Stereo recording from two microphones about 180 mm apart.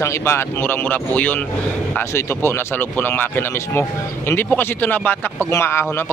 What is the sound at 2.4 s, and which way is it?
Speech, 10° left (ahead or behind).